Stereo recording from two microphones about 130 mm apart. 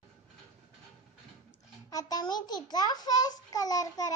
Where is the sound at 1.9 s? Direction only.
30° left (ahead or behind).